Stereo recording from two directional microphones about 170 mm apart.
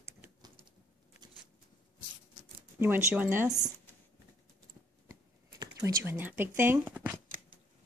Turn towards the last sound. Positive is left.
turn(degrees=-10)  # may be behind; listen again after turning